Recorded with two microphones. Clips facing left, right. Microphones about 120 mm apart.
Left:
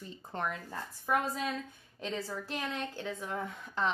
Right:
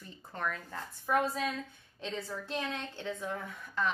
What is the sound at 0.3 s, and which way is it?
Speech, 20° left (ahead or behind).